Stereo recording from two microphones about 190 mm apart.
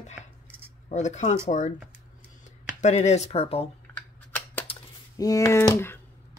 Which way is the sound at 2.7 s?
40° left (ahead or behind).